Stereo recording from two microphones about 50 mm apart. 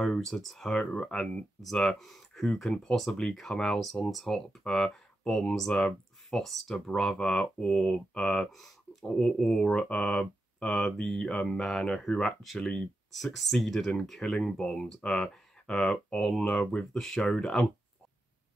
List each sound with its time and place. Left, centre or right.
0.0 s speech: centre
9.0 s speech: centre
11.2 s speech: centre
13.1 s speech: centre